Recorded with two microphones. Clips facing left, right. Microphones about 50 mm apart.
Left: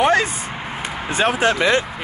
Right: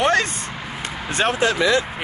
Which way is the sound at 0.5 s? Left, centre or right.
Centre.